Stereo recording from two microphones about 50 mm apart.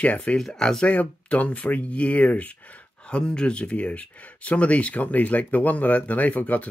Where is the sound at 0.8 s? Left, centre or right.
Left.